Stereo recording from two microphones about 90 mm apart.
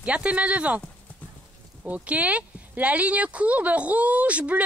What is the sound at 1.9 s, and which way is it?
Speech, 15° right (ahead or behind).